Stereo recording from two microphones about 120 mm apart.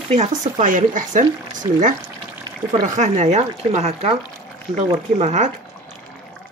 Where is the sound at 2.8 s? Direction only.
90° right.